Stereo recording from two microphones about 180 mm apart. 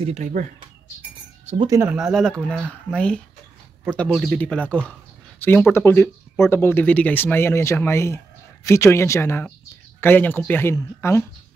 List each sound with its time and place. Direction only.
0.0 s speech: 40° right (ahead or behind)
1.4 s chink: 40° right (ahead or behind)
1.7 s speech: 15° right (ahead or behind)
2.0 s speech: centre (ahead or behind)